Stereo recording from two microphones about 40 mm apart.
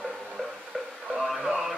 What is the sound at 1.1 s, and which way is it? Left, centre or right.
Radio, centre.